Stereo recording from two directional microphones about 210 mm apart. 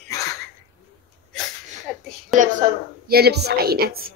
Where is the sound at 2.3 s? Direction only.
40° right (ahead or behind).